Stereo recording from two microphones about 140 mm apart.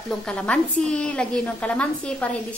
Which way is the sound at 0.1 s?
5° left (ahead or behind).